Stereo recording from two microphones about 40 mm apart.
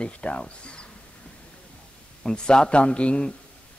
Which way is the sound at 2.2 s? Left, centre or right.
Left.